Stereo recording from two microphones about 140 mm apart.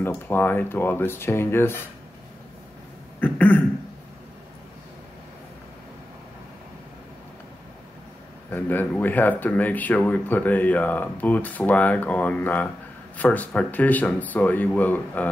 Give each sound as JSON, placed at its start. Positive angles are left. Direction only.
{"t": 0.0, "sound": "speech", "side_deg": 15}
{"t": 3.2, "sound": "speech", "side_deg": 10}
{"t": 8.5, "sound": "speech", "side_deg": 15}